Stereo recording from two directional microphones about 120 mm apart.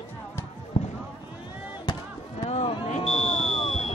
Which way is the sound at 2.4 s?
50° left (ahead or behind).